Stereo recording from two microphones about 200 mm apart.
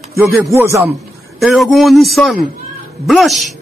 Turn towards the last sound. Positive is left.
turn(degrees=0)  # may be behind; listen again after turning